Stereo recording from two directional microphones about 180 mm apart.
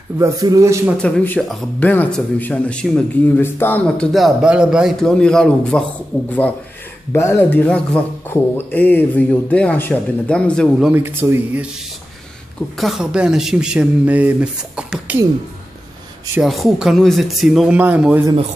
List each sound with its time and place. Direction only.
0.2 s speech: 20° right (ahead or behind)
1.0 s speech: 10° left (ahead or behind)
7.1 s speech: 15° left (ahead or behind)
10.9 s speech: 10° right (ahead or behind)
12.7 s speech: centre (ahead or behind)
16.3 s speech: centre (ahead or behind)